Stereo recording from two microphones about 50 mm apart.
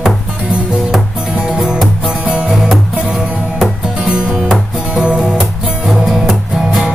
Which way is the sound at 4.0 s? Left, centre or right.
Centre.